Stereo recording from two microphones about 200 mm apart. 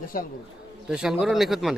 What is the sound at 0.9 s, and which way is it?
Speech, 5° right (ahead or behind).